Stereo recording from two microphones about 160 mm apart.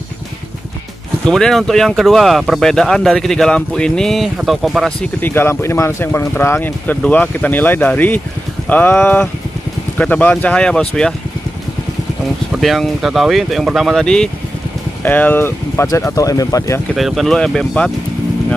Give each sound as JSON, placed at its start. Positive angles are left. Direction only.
{"t": 1.2, "sound": "speech", "side_deg": 5}
{"t": 5.2, "sound": "speech", "side_deg": 15}
{"t": 12.5, "sound": "speech", "side_deg": 0}
{"t": 16.9, "sound": "speech", "side_deg": 0}